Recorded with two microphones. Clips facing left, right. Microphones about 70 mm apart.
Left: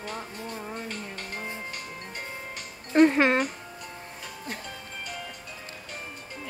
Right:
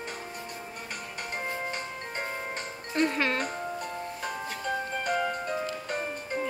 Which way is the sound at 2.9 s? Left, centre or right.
Left.